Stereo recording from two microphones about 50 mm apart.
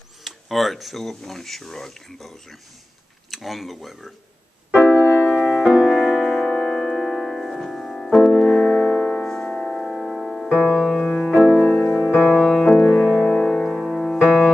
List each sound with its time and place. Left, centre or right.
0.2 s speech: centre
4.7 s music: left
5.0 s music: left
5.3 s music: centre
5.6 s music: centre
11.3 s music: centre
11.6 s music: left
11.9 s music: centre